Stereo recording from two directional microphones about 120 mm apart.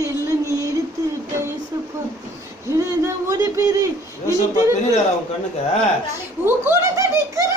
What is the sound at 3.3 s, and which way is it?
Speech, 30° right (ahead or behind).